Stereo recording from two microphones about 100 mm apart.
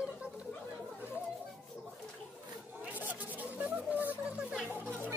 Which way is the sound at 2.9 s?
15° right (ahead or behind).